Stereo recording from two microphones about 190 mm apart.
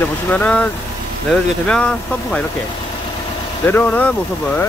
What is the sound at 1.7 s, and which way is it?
Speech, 5° left (ahead or behind).